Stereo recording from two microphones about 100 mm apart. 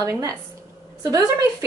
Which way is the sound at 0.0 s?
30° right (ahead or behind).